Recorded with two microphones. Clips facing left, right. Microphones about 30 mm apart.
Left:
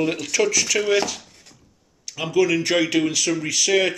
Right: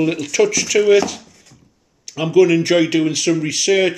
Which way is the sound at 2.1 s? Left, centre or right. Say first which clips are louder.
Right 7 dB; centre.